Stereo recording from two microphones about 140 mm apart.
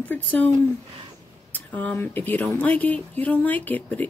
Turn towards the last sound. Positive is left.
turn(degrees=10)  # may be behind; listen again after turning